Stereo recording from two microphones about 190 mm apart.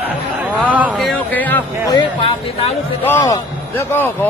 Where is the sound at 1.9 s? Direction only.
30° left (ahead or behind).